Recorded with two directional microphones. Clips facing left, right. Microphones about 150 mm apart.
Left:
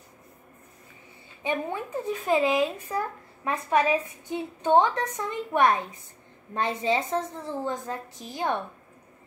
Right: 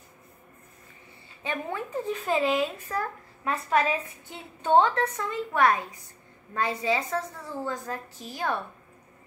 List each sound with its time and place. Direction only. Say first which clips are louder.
1.4 s a woman's voice: left 3 dB; 20° left (ahead or behind)